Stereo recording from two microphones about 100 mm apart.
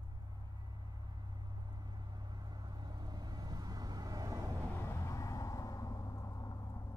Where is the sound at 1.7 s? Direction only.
45° right (ahead or behind).